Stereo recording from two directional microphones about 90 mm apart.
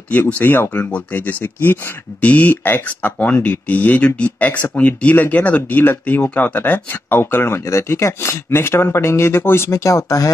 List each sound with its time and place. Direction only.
0.1 s speech: 20° left (ahead or behind); by 10.3 s 40° left (ahead or behind)